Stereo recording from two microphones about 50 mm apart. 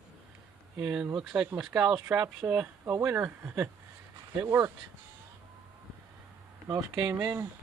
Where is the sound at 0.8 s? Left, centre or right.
Right.